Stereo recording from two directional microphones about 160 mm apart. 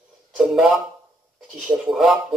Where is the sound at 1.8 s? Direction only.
Centre (ahead or behind).